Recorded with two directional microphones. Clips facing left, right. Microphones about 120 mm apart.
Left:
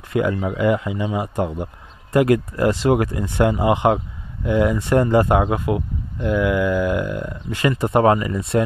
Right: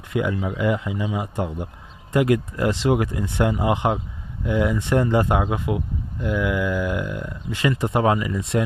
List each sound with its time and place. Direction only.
0.1 s speech: 50° left (ahead or behind)
4.7 s speech: 45° left (ahead or behind)